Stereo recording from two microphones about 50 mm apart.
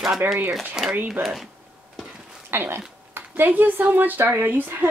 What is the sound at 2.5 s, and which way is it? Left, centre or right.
Speech, right.